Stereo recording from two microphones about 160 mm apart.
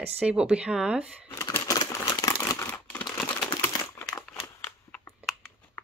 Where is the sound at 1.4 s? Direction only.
20° left (ahead or behind).